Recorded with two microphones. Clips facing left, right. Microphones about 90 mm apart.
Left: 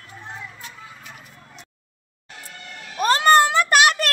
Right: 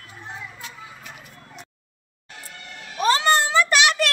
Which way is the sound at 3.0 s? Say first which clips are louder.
Left 4 dB; 50° left (ahead or behind).